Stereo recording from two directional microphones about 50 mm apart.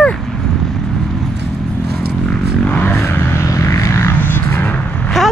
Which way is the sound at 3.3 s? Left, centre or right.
Left.